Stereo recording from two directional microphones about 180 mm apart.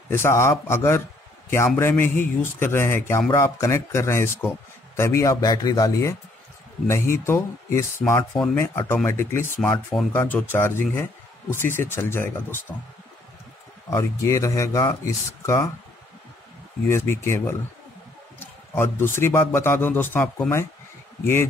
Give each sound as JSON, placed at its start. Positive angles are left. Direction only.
{"t": 0.1, "sound": "speech", "side_deg": 15}
{"t": 13.8, "sound": "speech", "side_deg": 15}
{"t": 16.9, "sound": "speech", "side_deg": 15}